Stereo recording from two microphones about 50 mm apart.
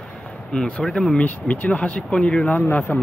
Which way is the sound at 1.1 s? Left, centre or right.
Left.